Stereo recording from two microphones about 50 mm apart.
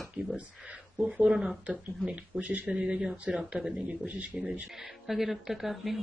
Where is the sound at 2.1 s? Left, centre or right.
Right.